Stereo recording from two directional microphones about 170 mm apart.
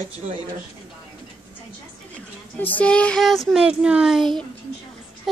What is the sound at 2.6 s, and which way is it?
A child's voice, 10° left (ahead or behind).